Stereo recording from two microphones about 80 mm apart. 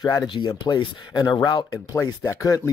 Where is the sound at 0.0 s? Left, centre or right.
Left.